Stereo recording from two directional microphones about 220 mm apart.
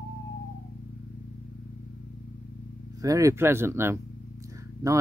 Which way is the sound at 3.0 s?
15° right (ahead or behind).